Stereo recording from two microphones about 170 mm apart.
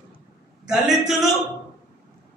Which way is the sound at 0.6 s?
5° right (ahead or behind).